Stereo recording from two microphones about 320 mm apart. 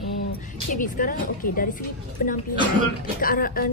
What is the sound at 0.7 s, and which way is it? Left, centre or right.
A woman's voice, left.